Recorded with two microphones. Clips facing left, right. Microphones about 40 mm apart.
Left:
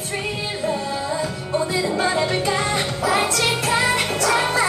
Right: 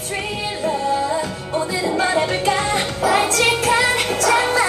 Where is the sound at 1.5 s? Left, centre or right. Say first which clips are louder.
Right 1 dB; centre.